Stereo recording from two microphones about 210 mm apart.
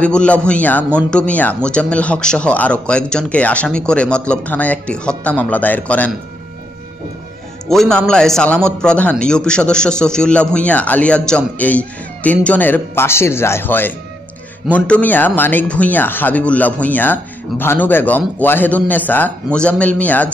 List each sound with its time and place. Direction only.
0.0 s speech: 5° left (ahead or behind)
7.7 s speech: 5° left (ahead or behind)